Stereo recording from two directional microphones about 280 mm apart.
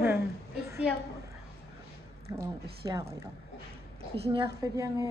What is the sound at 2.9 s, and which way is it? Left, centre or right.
Speech, centre.